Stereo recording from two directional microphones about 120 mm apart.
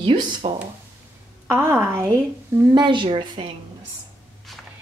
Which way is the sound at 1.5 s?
20° right (ahead or behind).